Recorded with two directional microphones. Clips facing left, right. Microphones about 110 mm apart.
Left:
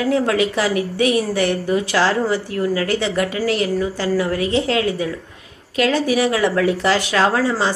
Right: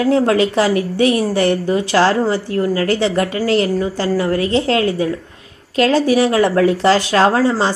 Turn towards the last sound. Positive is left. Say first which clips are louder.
# right 4 dB
turn(degrees=-35)  # may be behind; listen again after turning